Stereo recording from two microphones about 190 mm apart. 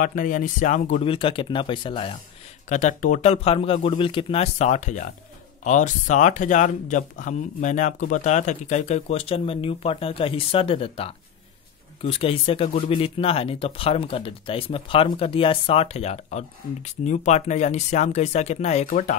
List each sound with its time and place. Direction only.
0.0 s speech: 45° left (ahead or behind); by 2.1 s 25° left (ahead or behind)
2.7 s speech: 40° left (ahead or behind)